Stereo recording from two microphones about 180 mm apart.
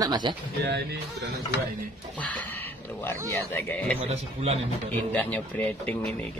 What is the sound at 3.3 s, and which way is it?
Speech, 10° left (ahead or behind).